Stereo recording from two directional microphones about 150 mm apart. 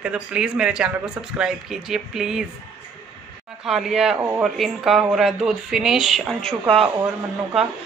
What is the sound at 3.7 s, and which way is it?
Speech, centre (ahead or behind).